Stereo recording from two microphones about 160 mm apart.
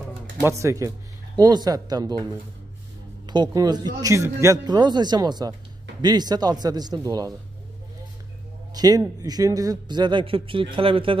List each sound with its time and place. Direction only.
0.4 s speech: 20° right (ahead or behind)
3.3 s speech: 25° right (ahead or behind)
8.7 s speech: 25° right (ahead or behind)